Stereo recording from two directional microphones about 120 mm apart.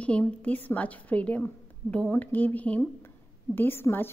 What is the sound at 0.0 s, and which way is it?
A woman's voice, 10° left (ahead or behind).